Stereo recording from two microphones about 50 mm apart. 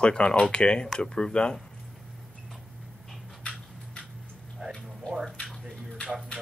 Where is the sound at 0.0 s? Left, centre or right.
Centre.